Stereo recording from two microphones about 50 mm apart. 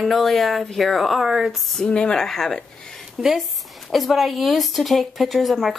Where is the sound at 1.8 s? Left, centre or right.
Centre.